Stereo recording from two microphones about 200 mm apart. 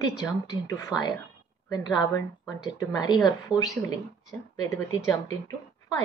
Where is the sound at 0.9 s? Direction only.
5° right (ahead or behind).